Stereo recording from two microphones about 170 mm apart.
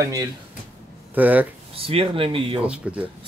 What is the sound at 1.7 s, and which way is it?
Speech, 35° right (ahead or behind).